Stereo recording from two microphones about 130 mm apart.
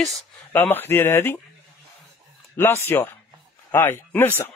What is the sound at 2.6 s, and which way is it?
A man's voice, 15° left (ahead or behind).